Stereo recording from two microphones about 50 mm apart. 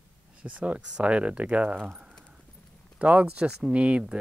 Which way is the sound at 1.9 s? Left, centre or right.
Right.